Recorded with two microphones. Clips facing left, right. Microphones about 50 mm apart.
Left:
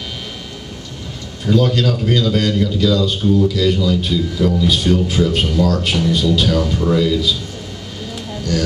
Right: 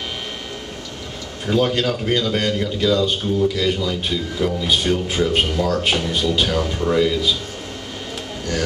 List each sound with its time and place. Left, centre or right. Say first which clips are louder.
1.4 s a man's voice: left 3 dB; right